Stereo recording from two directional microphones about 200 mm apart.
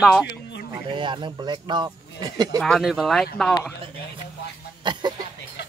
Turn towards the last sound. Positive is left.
turn(degrees=-20)  # may be behind; listen again after turning